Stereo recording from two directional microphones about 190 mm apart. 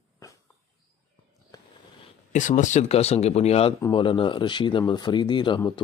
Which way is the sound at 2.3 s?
40° left (ahead or behind).